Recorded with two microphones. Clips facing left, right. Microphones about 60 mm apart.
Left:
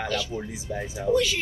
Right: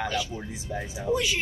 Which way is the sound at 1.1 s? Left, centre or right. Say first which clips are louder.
Left 4 dB; centre.